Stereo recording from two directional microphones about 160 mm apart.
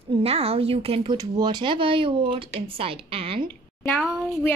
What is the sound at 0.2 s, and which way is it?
Speech, 40° right (ahead or behind).